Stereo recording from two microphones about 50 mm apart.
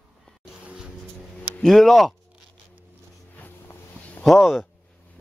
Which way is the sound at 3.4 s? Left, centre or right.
Left.